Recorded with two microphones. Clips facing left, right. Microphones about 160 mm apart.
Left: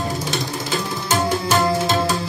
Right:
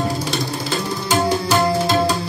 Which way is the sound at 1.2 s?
Centre (ahead or behind).